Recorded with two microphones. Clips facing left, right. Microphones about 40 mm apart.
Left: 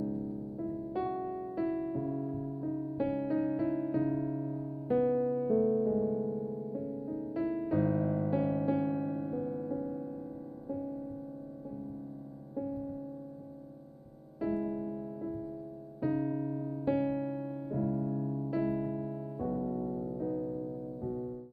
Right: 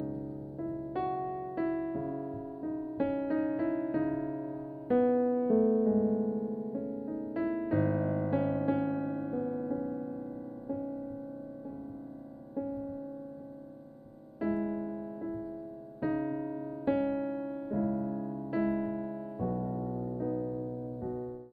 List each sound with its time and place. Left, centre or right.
0.0 s music: right
1.0 s electric piano: right
10.7 s music: right
12.5 s music: centre
14.4 s piano: right
19.7 s music: right